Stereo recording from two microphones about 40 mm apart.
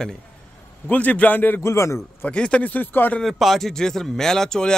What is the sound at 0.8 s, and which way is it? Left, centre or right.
Speech, left.